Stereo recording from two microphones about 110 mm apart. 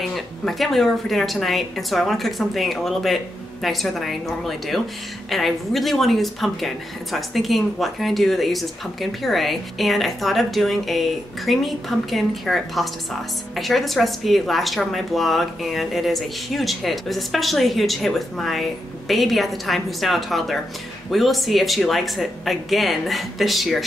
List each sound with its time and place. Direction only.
0.1 s speech: centre (ahead or behind)